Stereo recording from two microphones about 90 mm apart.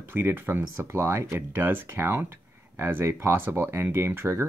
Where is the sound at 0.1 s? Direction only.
25° right (ahead or behind).